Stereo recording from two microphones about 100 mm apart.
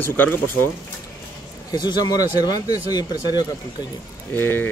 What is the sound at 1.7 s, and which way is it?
Speech, 45° left (ahead or behind).